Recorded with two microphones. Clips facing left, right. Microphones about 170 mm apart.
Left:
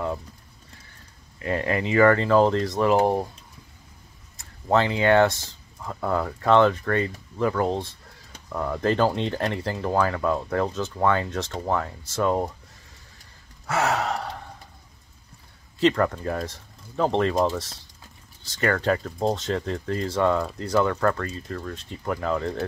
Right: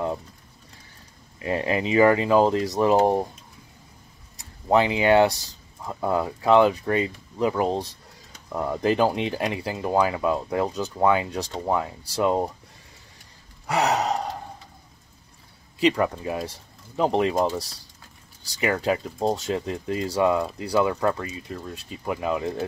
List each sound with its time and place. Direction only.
1.4 s speech: 20° right (ahead or behind)
4.4 s speech: 15° right (ahead or behind)
13.7 s speech: 15° right (ahead or behind)
15.8 s speech: 10° right (ahead or behind)
18.6 s speech: 5° right (ahead or behind)